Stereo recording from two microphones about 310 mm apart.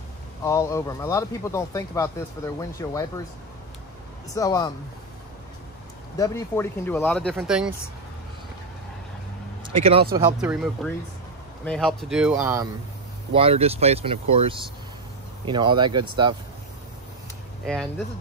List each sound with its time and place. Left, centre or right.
0.4 s speech: centre
4.4 s speech: centre
6.1 s speech: centre
9.7 s speech: centre
10.4 s speech: centre
13.3 s speech: centre
17.6 s speech: centre